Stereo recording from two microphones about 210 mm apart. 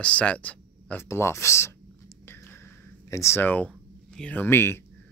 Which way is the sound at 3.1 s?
10° left (ahead or behind).